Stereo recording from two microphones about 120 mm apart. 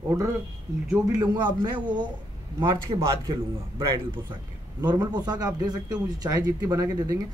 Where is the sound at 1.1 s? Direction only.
35° right (ahead or behind).